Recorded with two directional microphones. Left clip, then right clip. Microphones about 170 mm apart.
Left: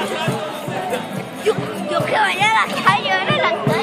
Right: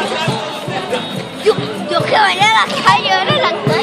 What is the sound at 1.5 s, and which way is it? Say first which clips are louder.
Music: right 5 dB; 15° right (ahead or behind).